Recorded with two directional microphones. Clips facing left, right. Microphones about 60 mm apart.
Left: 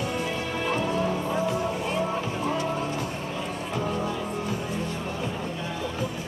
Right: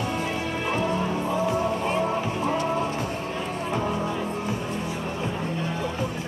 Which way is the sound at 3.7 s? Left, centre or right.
Centre.